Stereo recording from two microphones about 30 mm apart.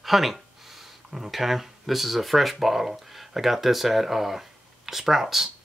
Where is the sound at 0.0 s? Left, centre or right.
Centre.